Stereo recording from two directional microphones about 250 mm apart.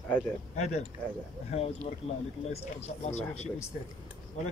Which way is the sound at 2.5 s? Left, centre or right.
Left.